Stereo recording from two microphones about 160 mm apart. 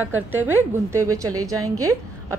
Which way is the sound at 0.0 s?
15° right (ahead or behind).